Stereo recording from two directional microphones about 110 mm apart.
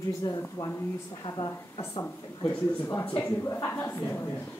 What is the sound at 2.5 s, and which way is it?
Speech, 20° left (ahead or behind).